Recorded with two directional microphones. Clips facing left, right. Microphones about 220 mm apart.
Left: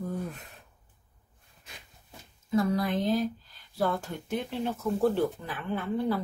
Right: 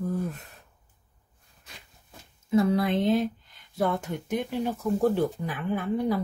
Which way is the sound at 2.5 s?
25° right (ahead or behind).